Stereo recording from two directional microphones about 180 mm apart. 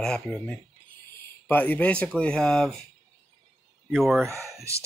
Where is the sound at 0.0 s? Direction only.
5° left (ahead or behind).